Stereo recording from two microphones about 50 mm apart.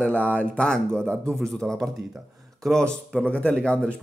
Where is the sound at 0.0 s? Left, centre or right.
Left.